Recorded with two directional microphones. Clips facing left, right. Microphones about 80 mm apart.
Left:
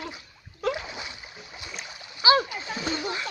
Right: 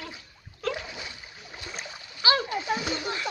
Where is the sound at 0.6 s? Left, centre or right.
Centre.